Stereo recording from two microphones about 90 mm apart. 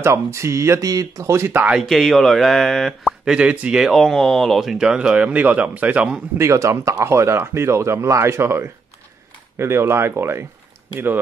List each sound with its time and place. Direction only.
0.0 s speech: 30° right (ahead or behind)
1.7 s speech: centre (ahead or behind)
3.3 s speech: 15° right (ahead or behind)
6.3 s speech: 30° right (ahead or behind)